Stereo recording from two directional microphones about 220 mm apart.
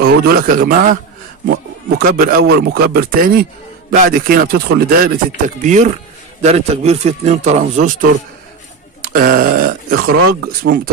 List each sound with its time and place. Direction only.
0.0 s speech: 45° right (ahead or behind)
10.1 s speech: 75° right (ahead or behind)